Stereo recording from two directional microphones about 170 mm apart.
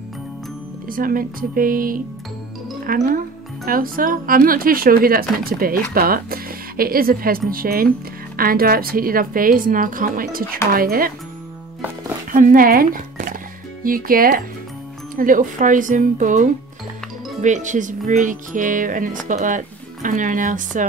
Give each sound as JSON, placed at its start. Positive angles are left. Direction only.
{"t": 0.8, "sound": "speech", "side_deg": -55}
{"t": 12.3, "sound": "a sound", "side_deg": -50}
{"t": 13.8, "sound": "speech", "side_deg": -55}